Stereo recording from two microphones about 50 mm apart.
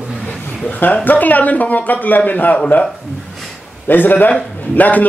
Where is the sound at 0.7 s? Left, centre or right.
Left.